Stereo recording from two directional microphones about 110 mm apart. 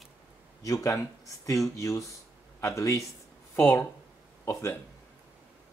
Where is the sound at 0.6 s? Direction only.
30° left (ahead or behind).